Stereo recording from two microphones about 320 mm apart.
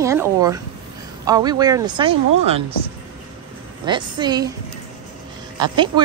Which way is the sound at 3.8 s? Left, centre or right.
Centre.